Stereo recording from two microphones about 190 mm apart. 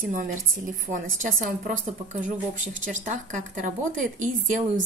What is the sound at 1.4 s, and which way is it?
A woman's voice, 45° right (ahead or behind).